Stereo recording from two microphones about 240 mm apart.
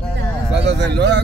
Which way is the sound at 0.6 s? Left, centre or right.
Right.